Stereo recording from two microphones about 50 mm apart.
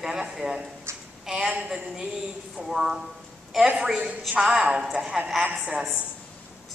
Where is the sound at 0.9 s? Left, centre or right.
Right.